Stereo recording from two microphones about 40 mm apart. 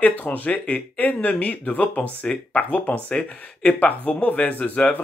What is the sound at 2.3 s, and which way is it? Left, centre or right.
Speech, left.